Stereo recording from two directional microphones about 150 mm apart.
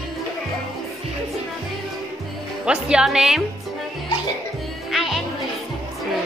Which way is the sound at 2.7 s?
5° right (ahead or behind).